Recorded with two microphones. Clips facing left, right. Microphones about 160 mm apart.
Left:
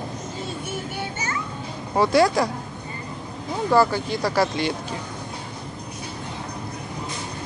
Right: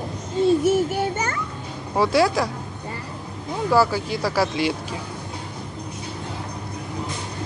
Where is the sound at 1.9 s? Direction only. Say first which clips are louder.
Left 1 dB; 5° right (ahead or behind).